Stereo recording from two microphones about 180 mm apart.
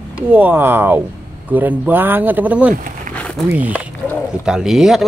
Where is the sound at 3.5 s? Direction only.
10° right (ahead or behind).